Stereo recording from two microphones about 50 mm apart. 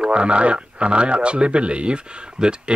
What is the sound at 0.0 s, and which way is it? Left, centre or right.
Speech, right.